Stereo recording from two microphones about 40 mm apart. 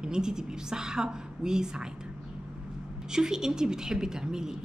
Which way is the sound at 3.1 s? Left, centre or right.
Centre.